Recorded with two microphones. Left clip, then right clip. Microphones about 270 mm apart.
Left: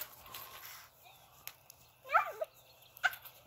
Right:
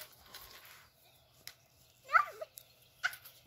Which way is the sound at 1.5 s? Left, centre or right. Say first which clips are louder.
Even; centre.